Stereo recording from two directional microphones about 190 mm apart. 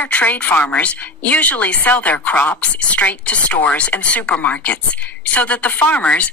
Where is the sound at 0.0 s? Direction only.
10° left (ahead or behind).